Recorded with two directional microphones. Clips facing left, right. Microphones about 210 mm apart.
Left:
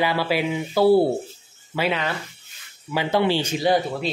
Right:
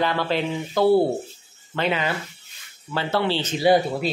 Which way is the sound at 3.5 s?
5° right (ahead or behind).